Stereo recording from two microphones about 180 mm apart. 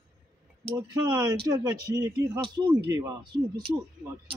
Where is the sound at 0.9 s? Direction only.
20° right (ahead or behind).